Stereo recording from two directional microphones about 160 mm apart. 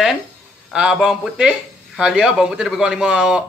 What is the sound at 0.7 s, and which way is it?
A man's voice, 5° right (ahead or behind).